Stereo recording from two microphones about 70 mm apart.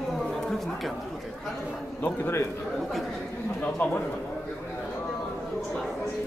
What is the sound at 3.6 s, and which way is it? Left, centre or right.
Speech, left.